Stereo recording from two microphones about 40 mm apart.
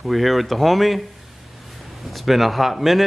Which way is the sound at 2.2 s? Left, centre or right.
Centre.